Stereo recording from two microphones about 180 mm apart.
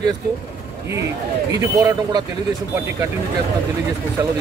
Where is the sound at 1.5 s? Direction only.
20° right (ahead or behind).